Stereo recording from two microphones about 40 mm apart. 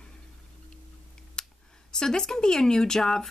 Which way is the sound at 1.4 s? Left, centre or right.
Centre.